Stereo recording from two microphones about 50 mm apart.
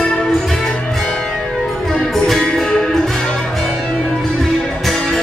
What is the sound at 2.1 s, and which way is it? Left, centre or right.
Music, centre.